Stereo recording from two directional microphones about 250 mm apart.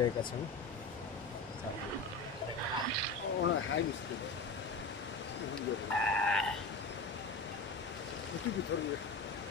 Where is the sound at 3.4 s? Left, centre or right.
Left.